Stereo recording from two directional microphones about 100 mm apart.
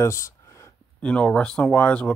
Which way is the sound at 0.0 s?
30° left (ahead or behind).